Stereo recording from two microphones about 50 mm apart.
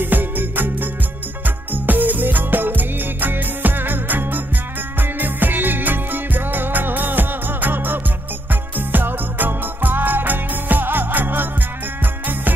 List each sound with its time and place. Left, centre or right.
0.0 s music: right